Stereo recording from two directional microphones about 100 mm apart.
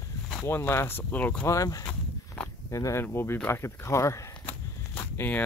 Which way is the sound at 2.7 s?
30° left (ahead or behind).